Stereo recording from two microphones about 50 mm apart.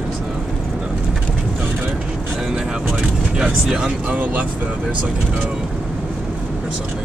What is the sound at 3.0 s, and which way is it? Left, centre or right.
Speech, centre.